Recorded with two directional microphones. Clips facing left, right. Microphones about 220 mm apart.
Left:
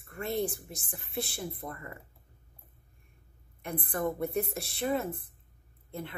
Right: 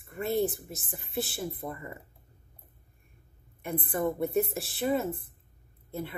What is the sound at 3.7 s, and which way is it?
Speech, 5° right (ahead or behind).